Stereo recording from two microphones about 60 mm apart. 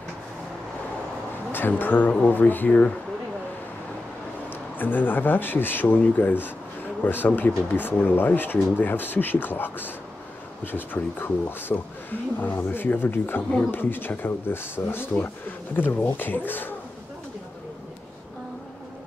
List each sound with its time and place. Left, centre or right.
1.5 s speech: left
4.5 s speech: left